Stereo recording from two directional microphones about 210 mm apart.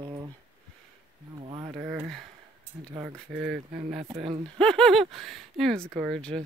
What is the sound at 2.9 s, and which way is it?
Speech, 15° right (ahead or behind).